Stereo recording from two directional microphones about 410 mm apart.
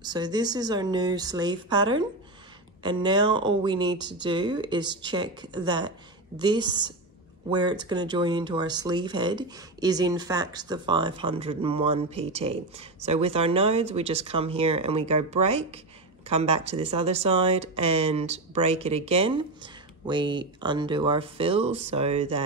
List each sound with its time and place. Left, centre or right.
0.0 s speech: centre